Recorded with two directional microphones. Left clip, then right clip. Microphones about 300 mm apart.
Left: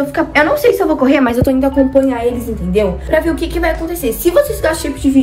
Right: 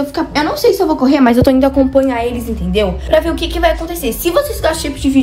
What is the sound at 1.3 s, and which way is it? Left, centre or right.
A woman's voice, right.